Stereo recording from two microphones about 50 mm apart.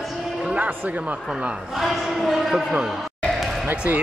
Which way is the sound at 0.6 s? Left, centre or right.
Right.